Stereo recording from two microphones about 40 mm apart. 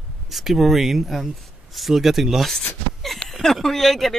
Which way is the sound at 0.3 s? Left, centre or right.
Centre.